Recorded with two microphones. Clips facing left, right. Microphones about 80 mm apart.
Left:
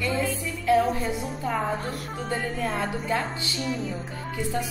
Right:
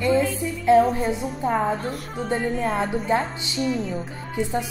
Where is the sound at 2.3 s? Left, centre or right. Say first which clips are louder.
Right 5 dB; right.